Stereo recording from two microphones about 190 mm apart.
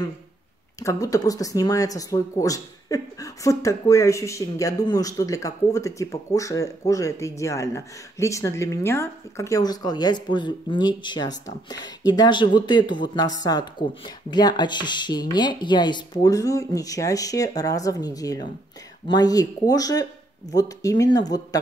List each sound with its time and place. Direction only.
0.7 s speech: 15° left (ahead or behind)